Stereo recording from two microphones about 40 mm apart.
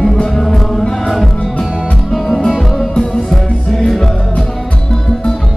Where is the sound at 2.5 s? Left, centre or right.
Centre.